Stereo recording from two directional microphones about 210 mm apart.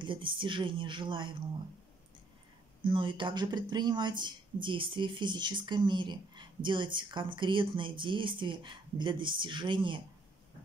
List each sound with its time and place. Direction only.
0.0 s speech: 25° right (ahead or behind)
2.8 s speech: 25° right (ahead or behind)